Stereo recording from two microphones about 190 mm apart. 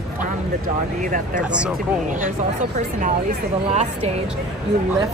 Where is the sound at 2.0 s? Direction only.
40° right (ahead or behind).